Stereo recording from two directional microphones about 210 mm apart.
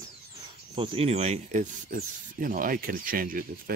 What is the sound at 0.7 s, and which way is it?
Speech, 25° right (ahead or behind).